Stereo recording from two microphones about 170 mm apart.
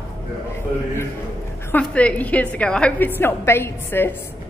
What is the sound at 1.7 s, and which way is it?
A woman's voice, 5° left (ahead or behind).